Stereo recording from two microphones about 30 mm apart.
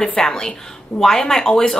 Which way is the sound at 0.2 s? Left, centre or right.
Left.